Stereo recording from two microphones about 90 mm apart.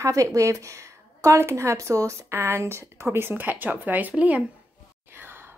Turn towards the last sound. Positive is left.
turn(degrees=-15)  # may be behind; listen again after turning